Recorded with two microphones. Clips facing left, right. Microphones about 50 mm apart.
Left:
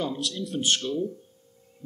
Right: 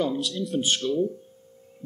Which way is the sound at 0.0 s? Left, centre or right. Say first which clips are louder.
Right 4 dB; centre.